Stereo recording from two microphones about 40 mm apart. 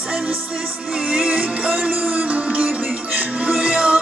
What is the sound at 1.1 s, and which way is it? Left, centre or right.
Music, right.